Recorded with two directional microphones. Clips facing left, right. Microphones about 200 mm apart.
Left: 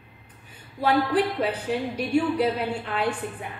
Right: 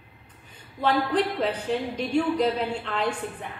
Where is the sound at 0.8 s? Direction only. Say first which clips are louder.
Left 1 dB; 10° left (ahead or behind).